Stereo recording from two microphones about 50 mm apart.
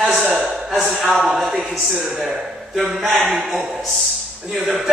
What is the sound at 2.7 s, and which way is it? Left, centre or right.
A man's voice, centre.